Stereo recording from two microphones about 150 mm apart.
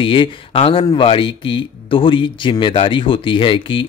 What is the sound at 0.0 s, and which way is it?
Speech, 35° left (ahead or behind).